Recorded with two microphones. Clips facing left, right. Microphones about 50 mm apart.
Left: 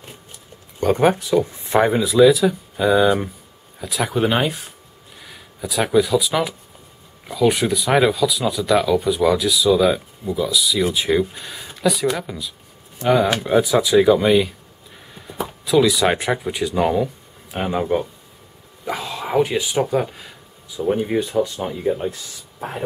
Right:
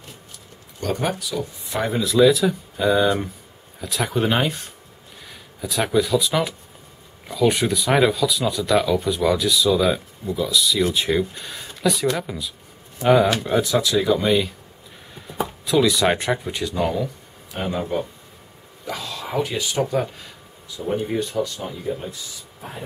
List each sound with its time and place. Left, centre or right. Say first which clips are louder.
0.7 s speech: left 8 dB; left
2.0 s speech: even; centre
13.3 s speech: left 3 dB; centre
16.7 s speech: left 4 dB; centre
21.5 s speech: left 6 dB; left
22.6 s speech: left 8 dB; left